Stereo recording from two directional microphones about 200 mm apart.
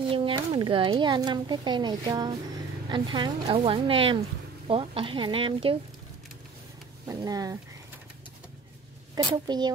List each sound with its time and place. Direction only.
0.1 s speech: 25° right (ahead or behind)
7.1 s speech: 20° right (ahead or behind)
9.1 s speech: 20° right (ahead or behind)